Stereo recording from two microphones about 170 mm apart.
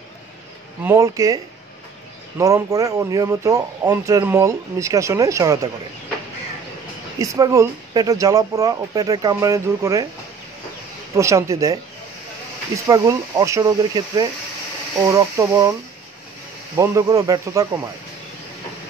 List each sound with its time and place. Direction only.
0.8 s speech: 15° right (ahead or behind)
7.2 s speech: 20° right (ahead or behind)
11.1 s speech: 15° right (ahead or behind)
12.8 s speech: 20° right (ahead or behind)
16.7 s speech: 20° right (ahead or behind)